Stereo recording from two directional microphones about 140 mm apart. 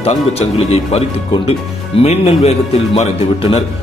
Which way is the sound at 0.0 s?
50° left (ahead or behind).